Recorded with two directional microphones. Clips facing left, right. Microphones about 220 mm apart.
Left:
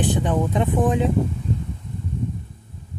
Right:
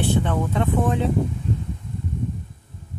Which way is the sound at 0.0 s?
15° left (ahead or behind).